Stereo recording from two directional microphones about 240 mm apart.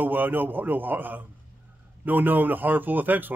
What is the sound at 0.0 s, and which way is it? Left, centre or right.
A man's voice, centre.